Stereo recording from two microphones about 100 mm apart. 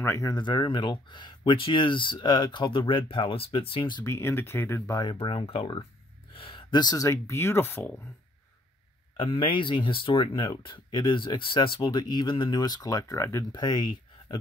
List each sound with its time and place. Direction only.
0.0 s speech: 25° left (ahead or behind)
0.3 s speech: 50° left (ahead or behind)
4.0 s speech: 25° left (ahead or behind)
5.1 s speech: 70° left (ahead or behind)
6.3 s a sound: 65° left (ahead or behind)
6.7 s speech: 40° left (ahead or behind)
7.1 s speech: 25° left (ahead or behind)
9.1 s speech: 65° left (ahead or behind)
12.0 s speech: 45° left (ahead or behind); by 13.5 s 30° left (ahead or behind)
13.5 s speech: 45° left (ahead or behind)